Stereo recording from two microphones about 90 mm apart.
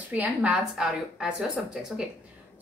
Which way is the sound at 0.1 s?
15° right (ahead or behind).